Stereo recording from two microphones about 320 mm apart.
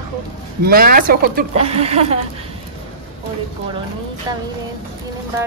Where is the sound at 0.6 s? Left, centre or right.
Right.